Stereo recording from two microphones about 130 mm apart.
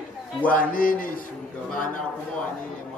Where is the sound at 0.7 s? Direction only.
90° left.